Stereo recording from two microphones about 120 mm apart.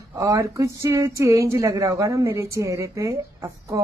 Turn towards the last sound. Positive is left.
turn(degrees=-25)  # may be behind; listen again after turning